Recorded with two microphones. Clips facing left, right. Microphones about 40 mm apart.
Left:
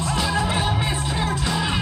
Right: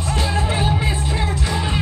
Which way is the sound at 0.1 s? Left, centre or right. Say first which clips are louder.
Right 2 dB; right.